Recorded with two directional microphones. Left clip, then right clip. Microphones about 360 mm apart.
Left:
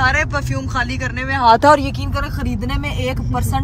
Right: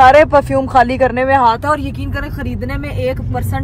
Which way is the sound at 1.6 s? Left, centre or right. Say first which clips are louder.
Left 5 dB; left.